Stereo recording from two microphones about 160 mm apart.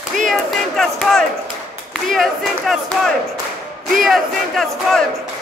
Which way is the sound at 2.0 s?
Centre (ahead or behind).